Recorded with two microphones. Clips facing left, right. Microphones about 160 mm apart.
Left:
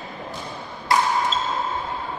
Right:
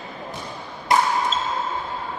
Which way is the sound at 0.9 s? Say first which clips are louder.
Right 1 dB; 20° right (ahead or behind).